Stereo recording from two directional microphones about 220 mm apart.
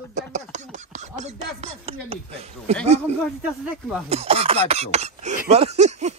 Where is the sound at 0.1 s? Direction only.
30° right (ahead or behind).